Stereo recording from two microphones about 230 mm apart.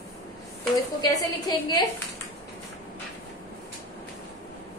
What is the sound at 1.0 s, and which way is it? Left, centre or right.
A woman's voice, centre.